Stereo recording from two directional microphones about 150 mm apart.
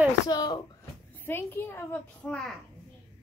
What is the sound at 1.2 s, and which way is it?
A woman's voice, 15° left (ahead or behind).